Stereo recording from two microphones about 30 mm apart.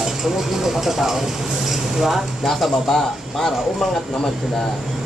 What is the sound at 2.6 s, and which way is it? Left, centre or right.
Speech, centre.